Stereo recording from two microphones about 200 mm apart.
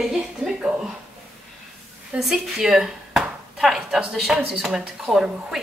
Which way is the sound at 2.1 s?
Centre (ahead or behind).